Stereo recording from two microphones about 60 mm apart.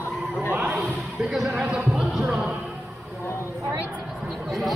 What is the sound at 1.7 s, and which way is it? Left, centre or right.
Music, centre.